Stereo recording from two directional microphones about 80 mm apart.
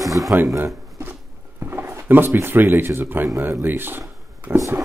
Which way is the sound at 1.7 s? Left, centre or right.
Right.